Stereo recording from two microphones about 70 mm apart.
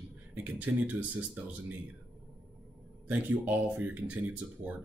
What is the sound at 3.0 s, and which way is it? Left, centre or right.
Speech, right.